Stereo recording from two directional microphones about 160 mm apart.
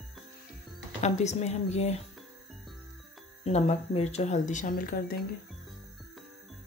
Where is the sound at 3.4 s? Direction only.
40° left (ahead or behind); by 5.2 s 65° left (ahead or behind).